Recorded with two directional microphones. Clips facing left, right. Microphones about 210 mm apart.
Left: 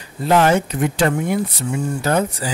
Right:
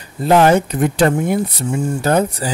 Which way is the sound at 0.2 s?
35° right (ahead or behind).